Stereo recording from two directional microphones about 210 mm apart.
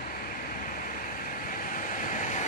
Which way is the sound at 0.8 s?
40° left (ahead or behind).